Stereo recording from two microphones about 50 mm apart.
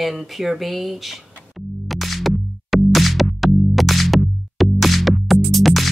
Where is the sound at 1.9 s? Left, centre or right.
Centre.